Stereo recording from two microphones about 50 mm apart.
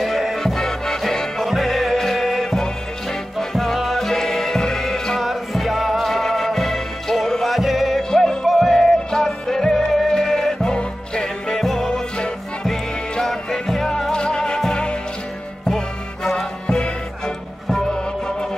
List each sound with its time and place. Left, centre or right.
0.0 s music: centre
0.4 s music: centre
1.4 s music: centre
5.2 s music: centre
8.1 s music: centre
11.9 s music: centre
16.6 s music: centre